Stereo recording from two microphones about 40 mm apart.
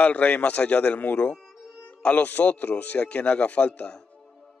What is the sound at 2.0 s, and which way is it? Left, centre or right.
Speech, left.